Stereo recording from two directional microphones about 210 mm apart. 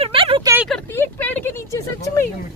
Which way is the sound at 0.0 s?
25° right (ahead or behind).